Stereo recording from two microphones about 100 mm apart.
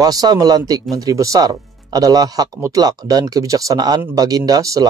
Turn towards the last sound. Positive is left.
turn(degrees=-35)  # may be behind; listen again after turning